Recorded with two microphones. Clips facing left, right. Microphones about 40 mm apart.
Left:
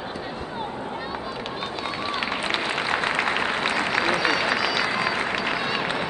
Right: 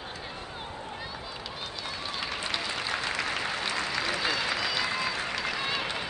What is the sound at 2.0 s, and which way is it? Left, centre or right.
Applause, left.